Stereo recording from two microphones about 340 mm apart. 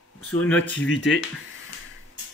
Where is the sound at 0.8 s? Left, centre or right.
Left.